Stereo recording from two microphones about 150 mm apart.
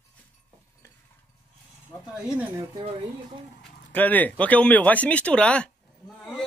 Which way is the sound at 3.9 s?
10° left (ahead or behind).